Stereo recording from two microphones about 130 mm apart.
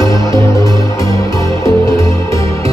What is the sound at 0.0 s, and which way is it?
Music, 25° left (ahead or behind).